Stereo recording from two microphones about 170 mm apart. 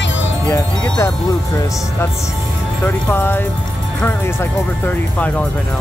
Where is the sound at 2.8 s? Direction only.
10° left (ahead or behind).